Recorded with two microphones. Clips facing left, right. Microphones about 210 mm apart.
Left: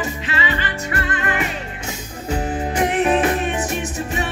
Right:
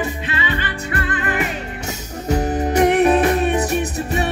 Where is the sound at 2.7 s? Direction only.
40° right (ahead or behind).